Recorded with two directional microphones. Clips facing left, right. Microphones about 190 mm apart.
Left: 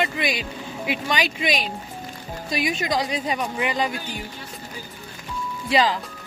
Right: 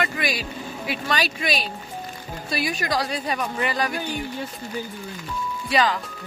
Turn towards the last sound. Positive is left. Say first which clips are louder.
# left 1 dB
turn(degrees=25)  # may be behind; listen again after turning